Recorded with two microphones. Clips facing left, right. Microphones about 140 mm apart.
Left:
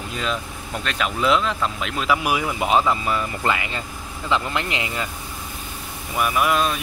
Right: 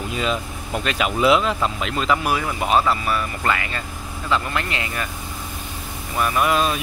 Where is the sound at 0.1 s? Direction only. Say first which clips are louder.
Right 2 dB; 5° right (ahead or behind); by 5.1 s 20° left (ahead or behind).